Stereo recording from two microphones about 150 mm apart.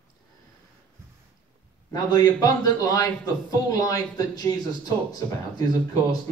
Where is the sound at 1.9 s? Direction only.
25° left (ahead or behind).